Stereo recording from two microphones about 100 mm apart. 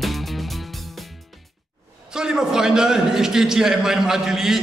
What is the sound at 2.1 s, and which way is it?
A man's voice, 5° right (ahead or behind).